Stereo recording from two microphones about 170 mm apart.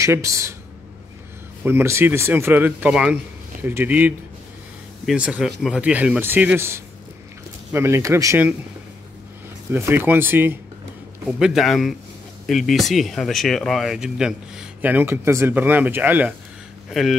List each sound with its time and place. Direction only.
0.0 s speech: 20° right (ahead or behind)
1.6 s speech: 15° right (ahead or behind)
9.7 s speech: 15° right (ahead or behind)